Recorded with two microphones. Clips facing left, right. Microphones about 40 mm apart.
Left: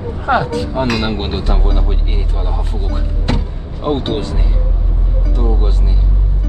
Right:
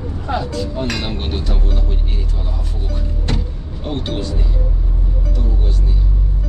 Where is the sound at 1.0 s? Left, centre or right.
Left.